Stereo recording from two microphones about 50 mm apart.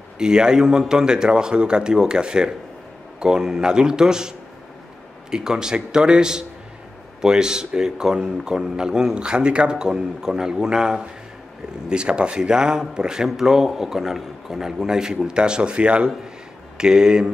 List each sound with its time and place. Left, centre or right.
0.2 s speech: centre